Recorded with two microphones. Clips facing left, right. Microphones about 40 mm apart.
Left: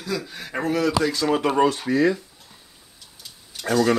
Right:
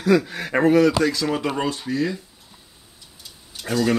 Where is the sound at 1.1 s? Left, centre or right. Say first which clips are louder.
Left 1 dB; centre.